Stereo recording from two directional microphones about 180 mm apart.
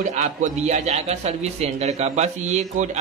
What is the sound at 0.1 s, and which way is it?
A man's voice, 40° right (ahead or behind).